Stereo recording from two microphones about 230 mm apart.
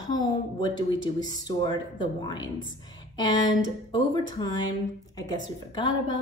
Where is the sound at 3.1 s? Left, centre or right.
Centre.